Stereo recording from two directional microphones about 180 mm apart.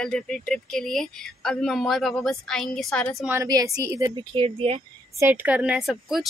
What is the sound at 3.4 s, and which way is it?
Speech, 20° right (ahead or behind).